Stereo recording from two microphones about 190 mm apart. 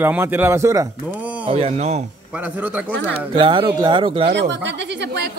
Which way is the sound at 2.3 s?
5° right (ahead or behind).